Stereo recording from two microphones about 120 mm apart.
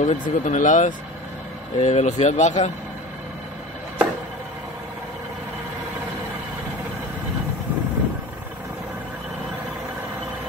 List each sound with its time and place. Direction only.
0.0 s speech: 85° left
1.8 s speech: 70° left (ahead or behind)